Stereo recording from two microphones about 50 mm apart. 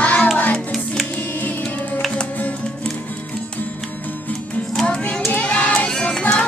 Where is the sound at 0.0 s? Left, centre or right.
Left.